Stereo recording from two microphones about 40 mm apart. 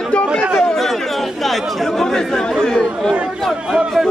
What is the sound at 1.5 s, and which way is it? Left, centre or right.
Chatter, centre.